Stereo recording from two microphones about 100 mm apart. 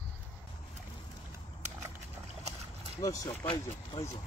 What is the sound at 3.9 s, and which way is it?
Speech, 60° left (ahead or behind).